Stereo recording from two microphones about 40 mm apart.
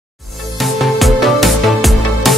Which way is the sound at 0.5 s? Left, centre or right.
Centre.